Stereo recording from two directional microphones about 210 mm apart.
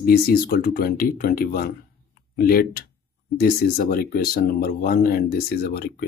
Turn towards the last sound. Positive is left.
turn(degrees=45)  # may be behind; listen again after turning